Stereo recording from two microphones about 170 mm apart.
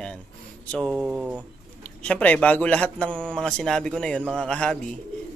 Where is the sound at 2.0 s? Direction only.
5° left (ahead or behind).